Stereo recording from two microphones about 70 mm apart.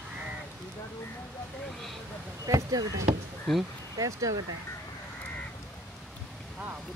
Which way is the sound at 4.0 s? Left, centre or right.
Right.